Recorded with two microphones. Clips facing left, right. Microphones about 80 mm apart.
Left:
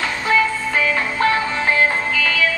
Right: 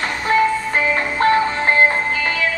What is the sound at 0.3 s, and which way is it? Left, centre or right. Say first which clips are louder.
Music: right 2 dB; right.